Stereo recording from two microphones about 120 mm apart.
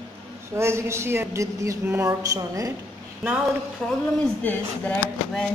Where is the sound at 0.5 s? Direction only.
20° right (ahead or behind).